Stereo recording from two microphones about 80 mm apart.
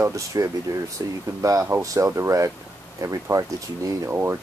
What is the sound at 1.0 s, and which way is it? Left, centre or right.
Speech, right.